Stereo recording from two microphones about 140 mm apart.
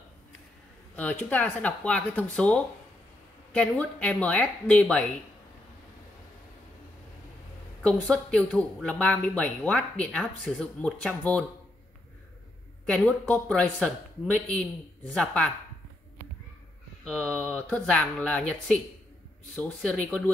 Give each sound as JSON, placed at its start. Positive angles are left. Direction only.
{"t": 0.9, "sound": "speech", "side_deg": 10}
{"t": 7.8, "sound": "speech", "side_deg": 5}
{"t": 12.8, "sound": "speech", "side_deg": 10}
{"t": 17.0, "sound": "speech", "side_deg": 5}